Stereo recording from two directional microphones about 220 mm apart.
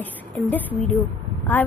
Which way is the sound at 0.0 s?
10° left (ahead or behind).